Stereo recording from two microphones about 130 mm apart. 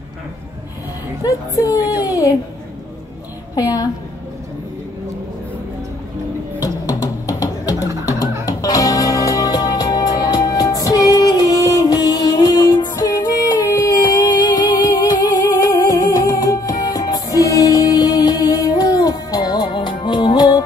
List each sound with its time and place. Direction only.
1.2 s a woman's voice: 25° left (ahead or behind)
3.5 s a woman's voice: 30° left (ahead or behind)
6.9 s music: 25° left (ahead or behind)